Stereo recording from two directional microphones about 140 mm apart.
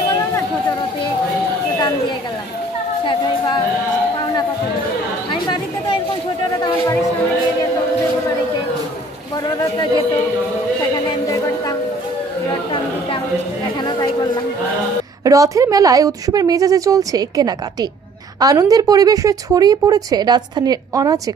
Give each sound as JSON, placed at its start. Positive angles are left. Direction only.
{"t": 3.1, "sound": "a woman's voice", "side_deg": 35}
{"t": 5.3, "sound": "a woman's voice", "side_deg": 35}
{"t": 11.1, "sound": "a woman's voice", "side_deg": 25}
{"t": 13.8, "sound": "a woman's voice", "side_deg": 35}
{"t": 15.2, "sound": "a woman's voice", "side_deg": -25}